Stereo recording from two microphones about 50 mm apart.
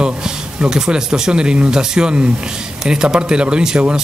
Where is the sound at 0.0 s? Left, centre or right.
Centre.